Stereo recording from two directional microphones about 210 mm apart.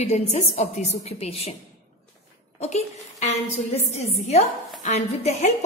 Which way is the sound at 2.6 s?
30° left (ahead or behind).